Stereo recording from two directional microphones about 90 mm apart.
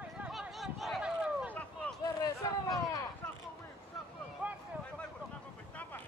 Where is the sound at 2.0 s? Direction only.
40° left (ahead or behind).